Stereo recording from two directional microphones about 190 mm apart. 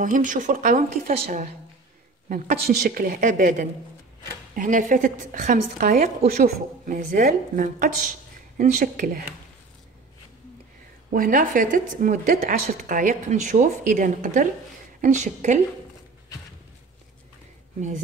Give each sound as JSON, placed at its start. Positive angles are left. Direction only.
{"t": 0.0, "sound": "speech", "side_deg": -45}
{"t": 7.0, "sound": "speech", "side_deg": -50}
{"t": 11.1, "sound": "a woman's voice", "side_deg": -45}
{"t": 17.7, "sound": "a woman's voice", "side_deg": -40}